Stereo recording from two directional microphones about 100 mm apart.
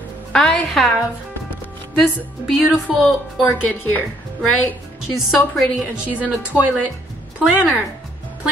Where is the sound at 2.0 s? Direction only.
Centre (ahead or behind).